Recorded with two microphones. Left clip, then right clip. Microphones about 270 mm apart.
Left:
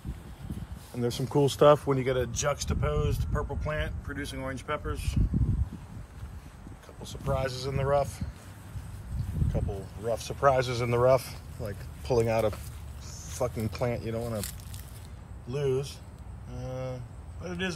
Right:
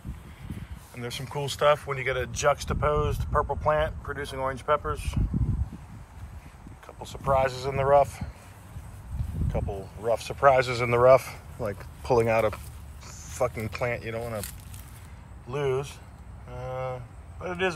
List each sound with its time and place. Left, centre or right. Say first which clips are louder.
0.9 s speech: left 6 dB; left; by 5.2 s centre
7.0 s speech: right 8 dB; centre
9.5 s speech: right 4 dB; centre
14.2 s speech: right 1 dB; centre
16.5 s a sound: right 5 dB; centre